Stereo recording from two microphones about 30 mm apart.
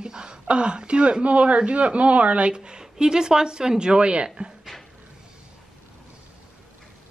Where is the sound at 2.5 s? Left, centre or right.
Right.